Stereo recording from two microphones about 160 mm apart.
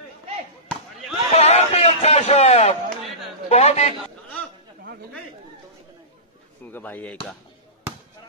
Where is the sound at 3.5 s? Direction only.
45° left (ahead or behind).